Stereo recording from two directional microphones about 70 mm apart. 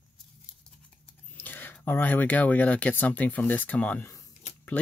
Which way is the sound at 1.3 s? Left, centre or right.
Left.